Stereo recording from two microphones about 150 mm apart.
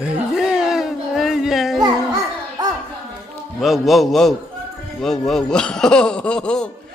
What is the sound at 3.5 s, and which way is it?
A man's voice, centre (ahead or behind).